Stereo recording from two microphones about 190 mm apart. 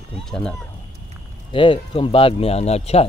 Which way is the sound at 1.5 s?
25° left (ahead or behind).